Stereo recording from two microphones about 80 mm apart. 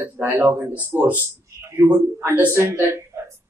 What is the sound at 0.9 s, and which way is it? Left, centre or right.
Speech, right.